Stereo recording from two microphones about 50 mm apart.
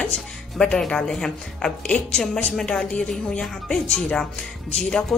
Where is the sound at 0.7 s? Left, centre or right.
Centre.